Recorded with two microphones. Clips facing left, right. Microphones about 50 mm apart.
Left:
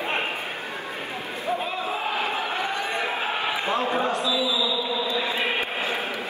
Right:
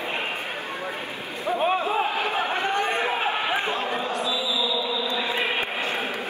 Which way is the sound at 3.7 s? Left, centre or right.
Left.